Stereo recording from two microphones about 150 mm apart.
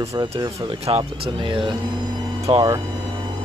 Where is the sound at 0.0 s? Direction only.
20° right (ahead or behind).